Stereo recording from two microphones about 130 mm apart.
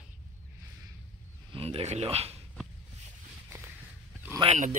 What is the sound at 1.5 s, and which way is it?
Speech, 45° right (ahead or behind).